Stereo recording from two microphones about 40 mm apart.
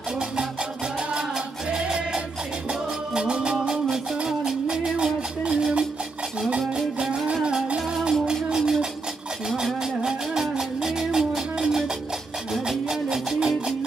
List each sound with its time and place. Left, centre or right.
1.7 s music: centre
7.7 s music: centre
10.0 s music: centre